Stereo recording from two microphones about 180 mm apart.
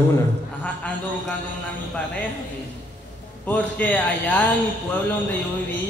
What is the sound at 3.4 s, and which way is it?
A man's voice, 10° left (ahead or behind).